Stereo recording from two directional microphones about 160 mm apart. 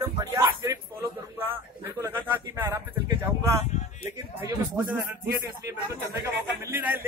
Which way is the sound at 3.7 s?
50° left (ahead or behind).